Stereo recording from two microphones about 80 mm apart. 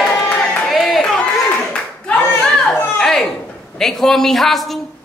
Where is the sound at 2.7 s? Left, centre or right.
Centre.